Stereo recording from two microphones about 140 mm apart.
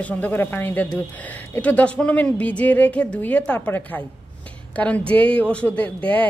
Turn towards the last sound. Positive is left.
turn(degrees=10)  # may be behind; listen again after turning